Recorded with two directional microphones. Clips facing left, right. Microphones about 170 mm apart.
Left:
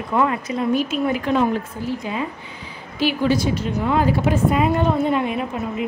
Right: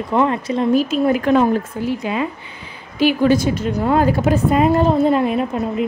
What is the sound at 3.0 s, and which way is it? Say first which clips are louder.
A woman's voice: right 5 dB; 50° right (ahead or behind).